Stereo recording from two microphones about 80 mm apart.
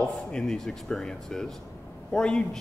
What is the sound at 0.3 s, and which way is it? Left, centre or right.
A man's voice, centre.